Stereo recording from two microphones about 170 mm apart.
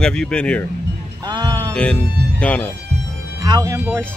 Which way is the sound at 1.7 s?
5° left (ahead or behind).